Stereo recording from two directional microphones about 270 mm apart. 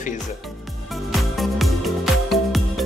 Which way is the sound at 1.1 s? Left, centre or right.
Centre.